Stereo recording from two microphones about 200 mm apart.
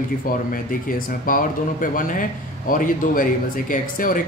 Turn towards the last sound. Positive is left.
turn(degrees=45)  # may be behind; listen again after turning